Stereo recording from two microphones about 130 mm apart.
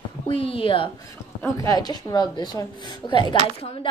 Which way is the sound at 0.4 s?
45° left (ahead or behind).